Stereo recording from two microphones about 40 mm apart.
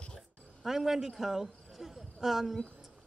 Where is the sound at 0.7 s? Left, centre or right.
Centre.